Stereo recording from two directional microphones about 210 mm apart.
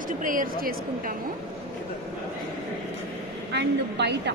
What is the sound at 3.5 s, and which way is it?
Speech, 55° right (ahead or behind).